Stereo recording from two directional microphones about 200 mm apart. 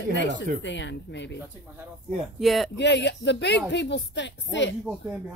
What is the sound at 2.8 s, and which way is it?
Speech, 60° left (ahead or behind).